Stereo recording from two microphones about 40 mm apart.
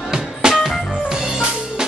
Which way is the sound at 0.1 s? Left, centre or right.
Centre.